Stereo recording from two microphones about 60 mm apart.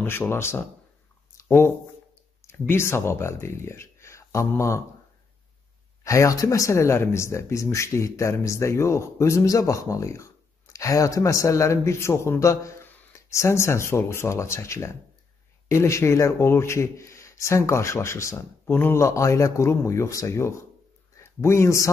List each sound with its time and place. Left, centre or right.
0.0 s speech: left
2.4 s speech: left
6.0 s a man's voice: left
18.7 s speech: left
18.9 s speech: left
21.2 s speech: left